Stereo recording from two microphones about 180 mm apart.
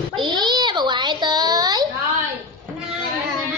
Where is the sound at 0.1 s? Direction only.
25° right (ahead or behind).